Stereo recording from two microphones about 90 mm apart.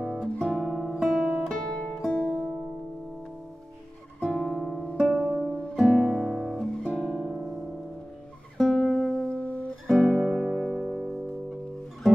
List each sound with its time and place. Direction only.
0.2 s guitar: 5° left (ahead or behind)
2.0 s music: centre (ahead or behind)
4.2 s music: 5° left (ahead or behind)
5.1 s music: 10° right (ahead or behind)
5.8 s guitar: centre (ahead or behind)
8.5 s music: 5° left (ahead or behind)
9.4 s music: 15° left (ahead or behind)
9.8 s music: centre (ahead or behind)